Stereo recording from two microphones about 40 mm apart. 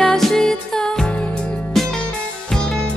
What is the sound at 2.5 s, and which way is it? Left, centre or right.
Music, left.